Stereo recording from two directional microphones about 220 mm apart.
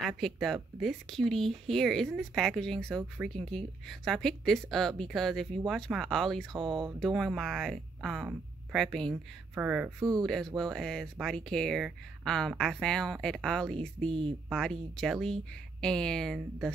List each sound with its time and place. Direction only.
0.2 s speech: centre (ahead or behind)
6.6 s speech: 20° right (ahead or behind)
7.0 s speech: centre (ahead or behind)